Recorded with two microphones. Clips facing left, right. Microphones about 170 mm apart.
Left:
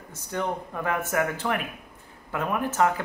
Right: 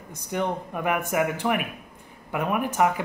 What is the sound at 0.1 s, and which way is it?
Speech, 15° right (ahead or behind).